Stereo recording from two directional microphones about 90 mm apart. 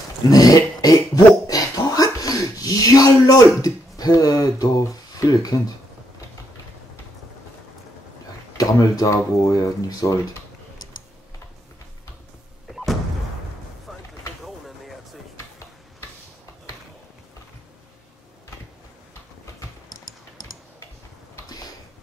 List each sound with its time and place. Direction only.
0.3 s cough: 40° left (ahead or behind)
8.5 s speech: 40° left (ahead or behind)
12.6 s a sound: centre (ahead or behind)